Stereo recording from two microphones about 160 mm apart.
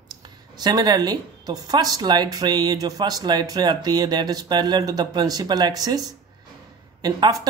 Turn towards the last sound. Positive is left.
turn(degrees=-25)  # may be behind; listen again after turning